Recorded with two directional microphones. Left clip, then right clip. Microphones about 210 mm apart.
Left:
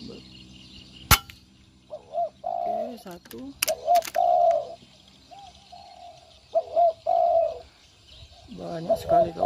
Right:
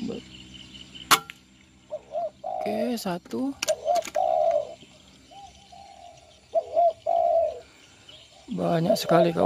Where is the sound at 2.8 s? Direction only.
50° right (ahead or behind).